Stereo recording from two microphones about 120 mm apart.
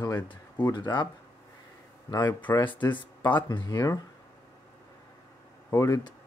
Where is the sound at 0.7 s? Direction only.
35° left (ahead or behind).